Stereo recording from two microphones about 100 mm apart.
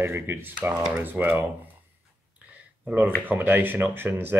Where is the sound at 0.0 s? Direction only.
25° right (ahead or behind).